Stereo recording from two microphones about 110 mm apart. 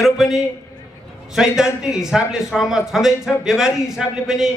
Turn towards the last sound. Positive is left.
turn(degrees=-5)  # may be behind; listen again after turning